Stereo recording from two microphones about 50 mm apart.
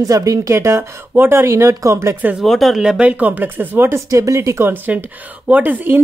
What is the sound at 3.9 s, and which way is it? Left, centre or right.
Speech, right.